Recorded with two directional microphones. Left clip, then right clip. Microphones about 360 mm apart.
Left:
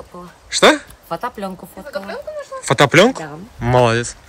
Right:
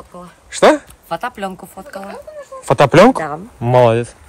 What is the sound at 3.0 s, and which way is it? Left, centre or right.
Speech, centre.